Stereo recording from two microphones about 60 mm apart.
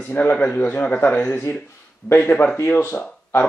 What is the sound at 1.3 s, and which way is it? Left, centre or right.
A man's voice, left.